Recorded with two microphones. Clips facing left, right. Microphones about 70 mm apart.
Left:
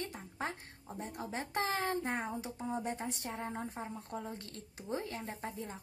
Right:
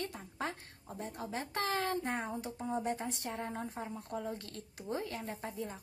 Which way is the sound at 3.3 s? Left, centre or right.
Centre.